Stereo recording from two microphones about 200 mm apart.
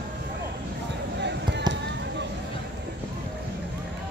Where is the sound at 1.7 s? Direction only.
20° right (ahead or behind).